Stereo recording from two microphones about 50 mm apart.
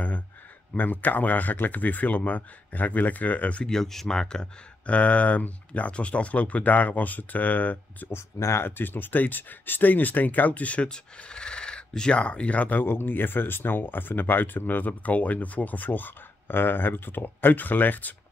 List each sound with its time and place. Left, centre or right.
0.7 s speech: left
3.6 s speech: centre
4.8 s speech: left
8.1 s speech: left
8.6 s speech: left
10.9 s speech: centre; by 18.1 s left